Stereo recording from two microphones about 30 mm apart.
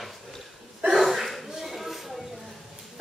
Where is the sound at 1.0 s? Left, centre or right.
Centre.